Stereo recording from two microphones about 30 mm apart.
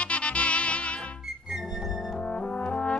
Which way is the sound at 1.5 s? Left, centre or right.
Centre.